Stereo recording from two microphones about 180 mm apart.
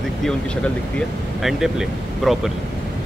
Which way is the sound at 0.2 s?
5° left (ahead or behind).